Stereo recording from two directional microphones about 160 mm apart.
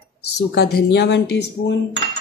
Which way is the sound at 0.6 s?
90° left.